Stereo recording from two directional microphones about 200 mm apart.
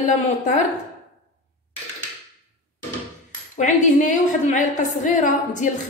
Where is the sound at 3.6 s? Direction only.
40° left (ahead or behind).